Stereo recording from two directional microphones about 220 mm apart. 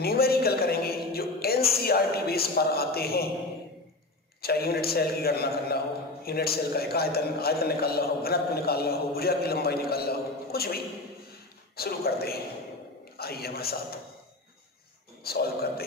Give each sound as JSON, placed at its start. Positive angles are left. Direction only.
{"t": 0.0, "sound": "a sound", "side_deg": 45}
{"t": 4.4, "sound": "a man's voice", "side_deg": 45}
{"t": 15.2, "sound": "a man's voice", "side_deg": 45}